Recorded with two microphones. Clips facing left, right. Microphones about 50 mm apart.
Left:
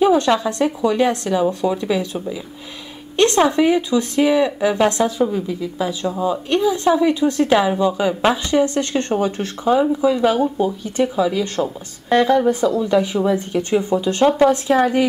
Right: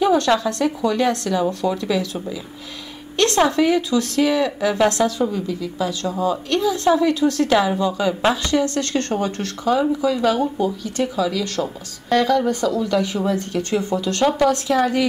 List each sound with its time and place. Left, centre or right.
0.0 s speech: centre
3.2 s speech: centre
6.0 s speech: centre